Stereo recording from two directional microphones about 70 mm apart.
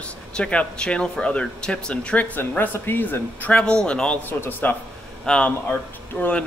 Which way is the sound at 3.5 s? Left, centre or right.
Centre.